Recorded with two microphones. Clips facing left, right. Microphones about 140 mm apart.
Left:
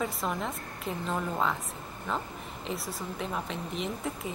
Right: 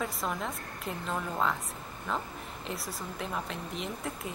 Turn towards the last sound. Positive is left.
turn(degrees=0)  # may be behind; listen again after turning